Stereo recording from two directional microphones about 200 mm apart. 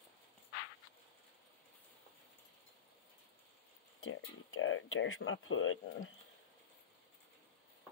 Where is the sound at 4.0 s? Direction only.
80° left.